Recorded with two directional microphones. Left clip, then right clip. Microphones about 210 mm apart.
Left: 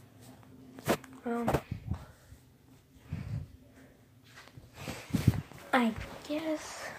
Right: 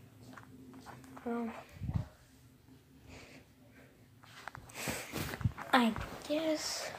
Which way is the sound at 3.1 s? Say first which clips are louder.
Left 5 dB; 20° right (ahead or behind).